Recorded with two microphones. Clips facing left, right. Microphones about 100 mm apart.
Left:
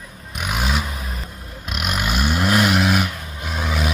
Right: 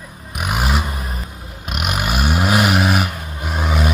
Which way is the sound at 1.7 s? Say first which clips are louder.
Right 2 dB; 60° right (ahead or behind).